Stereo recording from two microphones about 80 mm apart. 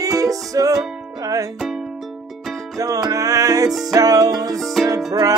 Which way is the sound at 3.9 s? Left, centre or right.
Right.